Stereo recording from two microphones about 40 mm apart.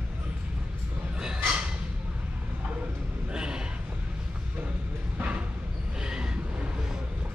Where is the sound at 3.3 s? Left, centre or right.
Right.